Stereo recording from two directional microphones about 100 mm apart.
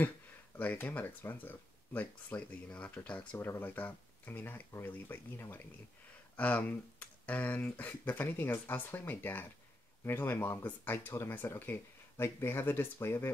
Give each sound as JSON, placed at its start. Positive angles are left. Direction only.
{"t": 0.6, "sound": "speech", "side_deg": 15}